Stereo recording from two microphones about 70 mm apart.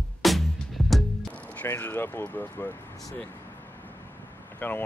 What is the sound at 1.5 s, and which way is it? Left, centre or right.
Speech, left.